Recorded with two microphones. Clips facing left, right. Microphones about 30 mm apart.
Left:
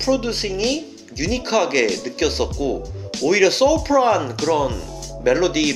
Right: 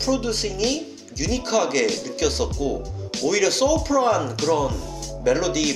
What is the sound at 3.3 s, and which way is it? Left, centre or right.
Speech, centre.